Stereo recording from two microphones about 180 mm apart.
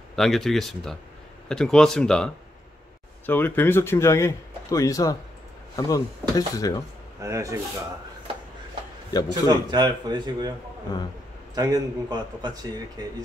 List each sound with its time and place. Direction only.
0.1 s speech: centre (ahead or behind); by 6.8 s 20° left (ahead or behind)
7.2 s speech: 15° right (ahead or behind)
9.3 s speech: 25° right (ahead or behind)
11.5 s speech: 20° right (ahead or behind)